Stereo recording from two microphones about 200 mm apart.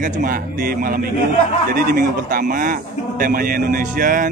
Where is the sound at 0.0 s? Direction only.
45° right (ahead or behind).